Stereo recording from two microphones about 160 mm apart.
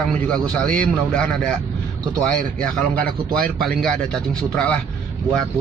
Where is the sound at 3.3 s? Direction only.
65° right (ahead or behind).